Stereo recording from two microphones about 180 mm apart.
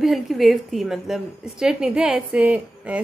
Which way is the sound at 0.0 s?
Centre (ahead or behind).